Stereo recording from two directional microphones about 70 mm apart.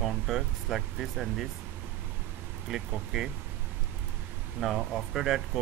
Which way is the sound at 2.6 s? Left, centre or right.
Centre.